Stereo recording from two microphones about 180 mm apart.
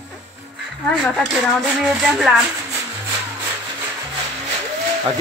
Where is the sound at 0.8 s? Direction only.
Centre (ahead or behind).